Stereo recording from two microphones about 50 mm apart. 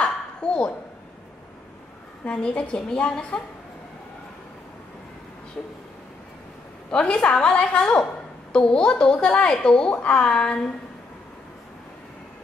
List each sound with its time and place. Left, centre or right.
0.0 s a sound: centre
2.2 s a woman's voice: left
6.9 s a woman's voice: left